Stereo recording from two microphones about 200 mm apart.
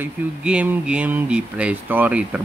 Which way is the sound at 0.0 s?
5° right (ahead or behind).